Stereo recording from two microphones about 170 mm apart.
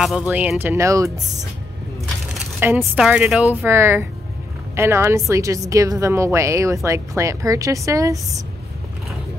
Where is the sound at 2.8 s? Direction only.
5° right (ahead or behind).